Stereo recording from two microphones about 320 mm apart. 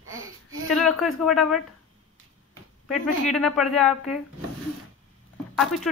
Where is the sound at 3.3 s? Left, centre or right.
Centre.